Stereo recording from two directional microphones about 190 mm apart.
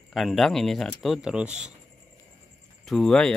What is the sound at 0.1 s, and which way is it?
Speech, centre (ahead or behind).